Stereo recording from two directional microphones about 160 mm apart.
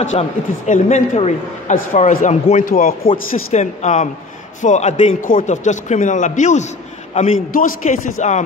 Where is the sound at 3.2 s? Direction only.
45° left (ahead or behind).